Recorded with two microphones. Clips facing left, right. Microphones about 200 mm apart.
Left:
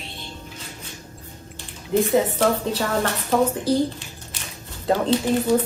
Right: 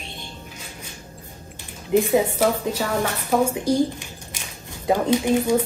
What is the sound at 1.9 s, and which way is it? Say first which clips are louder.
Speech: right 1 dB; 10° right (ahead or behind).